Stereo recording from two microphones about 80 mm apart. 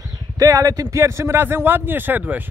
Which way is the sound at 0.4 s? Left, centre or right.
Right.